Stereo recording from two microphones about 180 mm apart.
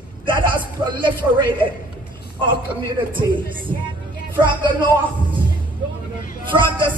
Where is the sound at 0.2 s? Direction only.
25° right (ahead or behind).